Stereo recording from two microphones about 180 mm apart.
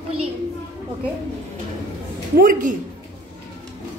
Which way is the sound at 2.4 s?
50° right (ahead or behind).